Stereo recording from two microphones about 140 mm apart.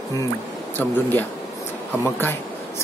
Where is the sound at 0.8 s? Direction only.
15° left (ahead or behind).